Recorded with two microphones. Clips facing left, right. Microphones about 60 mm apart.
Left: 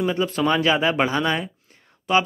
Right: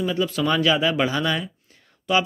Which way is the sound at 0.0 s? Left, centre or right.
Left.